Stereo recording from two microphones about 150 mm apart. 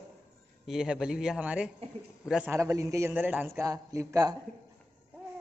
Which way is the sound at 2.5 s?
20° right (ahead or behind).